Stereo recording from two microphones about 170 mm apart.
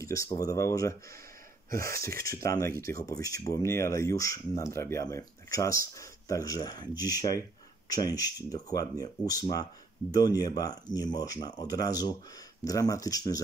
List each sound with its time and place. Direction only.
0.0 s speech: 20° left (ahead or behind)